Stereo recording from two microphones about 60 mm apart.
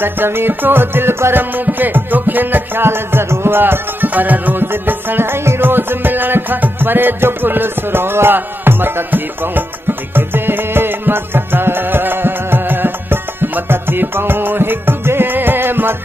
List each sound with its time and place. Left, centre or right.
0.0 s music: right